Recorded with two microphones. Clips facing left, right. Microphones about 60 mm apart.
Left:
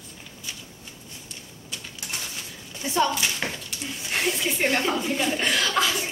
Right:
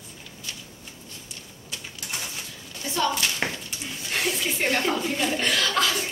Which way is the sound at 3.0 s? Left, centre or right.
Centre.